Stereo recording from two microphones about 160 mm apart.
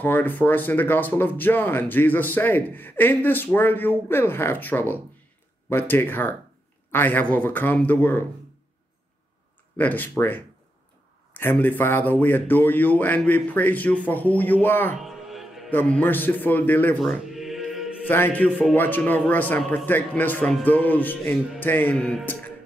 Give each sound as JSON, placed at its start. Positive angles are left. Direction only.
{"t": 0.0, "sound": "speech", "side_deg": 10}
{"t": 9.8, "sound": "speech", "side_deg": 10}
{"t": 15.0, "sound": "music", "side_deg": 0}
{"t": 15.7, "sound": "speech", "side_deg": 10}
{"t": 17.0, "sound": "music", "side_deg": 0}
{"t": 18.0, "sound": "speech", "side_deg": 10}